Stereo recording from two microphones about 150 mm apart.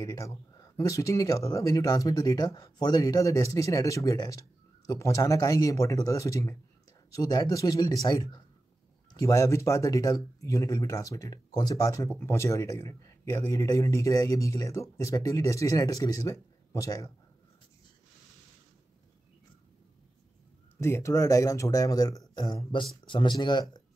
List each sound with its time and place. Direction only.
0.0 s speech: 25° left (ahead or behind)
20.8 s speech: 20° left (ahead or behind)